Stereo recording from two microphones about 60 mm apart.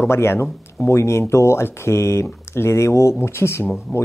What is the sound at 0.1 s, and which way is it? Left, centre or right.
Speech, left.